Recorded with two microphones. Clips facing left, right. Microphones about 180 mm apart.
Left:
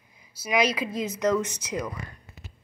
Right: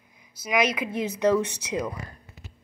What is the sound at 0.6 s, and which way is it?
A woman's voice, 20° right (ahead or behind).